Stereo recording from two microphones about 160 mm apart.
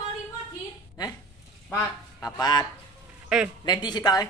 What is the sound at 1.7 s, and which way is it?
Speech, 20° left (ahead or behind).